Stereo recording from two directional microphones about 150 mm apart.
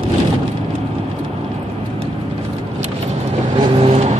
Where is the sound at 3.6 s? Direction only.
35° right (ahead or behind).